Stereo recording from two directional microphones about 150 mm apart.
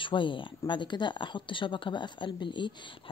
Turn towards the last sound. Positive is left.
turn(degrees=30)  # may be behind; listen again after turning